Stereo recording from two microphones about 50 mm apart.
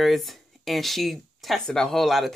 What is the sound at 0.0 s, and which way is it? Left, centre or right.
Speech, centre.